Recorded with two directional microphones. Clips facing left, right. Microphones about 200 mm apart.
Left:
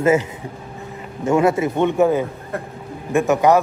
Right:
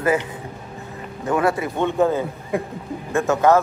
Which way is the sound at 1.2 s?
25° left (ahead or behind).